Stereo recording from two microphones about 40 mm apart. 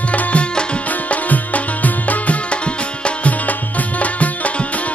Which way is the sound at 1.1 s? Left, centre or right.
Left.